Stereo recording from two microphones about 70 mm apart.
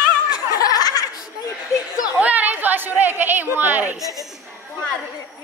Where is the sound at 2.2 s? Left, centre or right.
Right.